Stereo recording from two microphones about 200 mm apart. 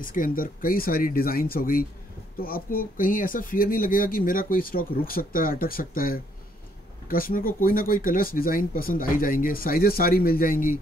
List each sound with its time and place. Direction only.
0.0 s speech: 45° left (ahead or behind)